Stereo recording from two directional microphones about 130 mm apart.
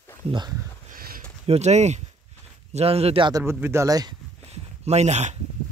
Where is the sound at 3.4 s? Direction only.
20° right (ahead or behind).